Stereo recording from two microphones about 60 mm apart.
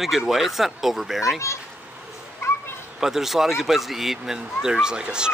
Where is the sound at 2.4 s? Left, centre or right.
Left.